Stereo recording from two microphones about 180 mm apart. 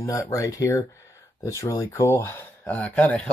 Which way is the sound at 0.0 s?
15° left (ahead or behind).